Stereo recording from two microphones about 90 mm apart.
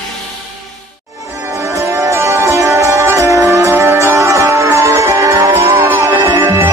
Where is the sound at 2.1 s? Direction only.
30° right (ahead or behind).